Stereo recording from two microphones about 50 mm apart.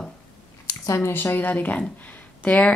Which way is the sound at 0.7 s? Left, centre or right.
Left.